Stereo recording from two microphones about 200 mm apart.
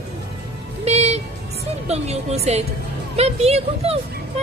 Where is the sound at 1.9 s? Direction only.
30° right (ahead or behind).